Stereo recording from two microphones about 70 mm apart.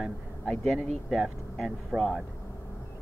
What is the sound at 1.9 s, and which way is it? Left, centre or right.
Speech, right.